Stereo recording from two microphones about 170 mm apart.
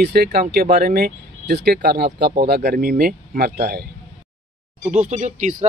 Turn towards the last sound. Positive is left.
turn(degrees=-45)  # may be behind; listen again after turning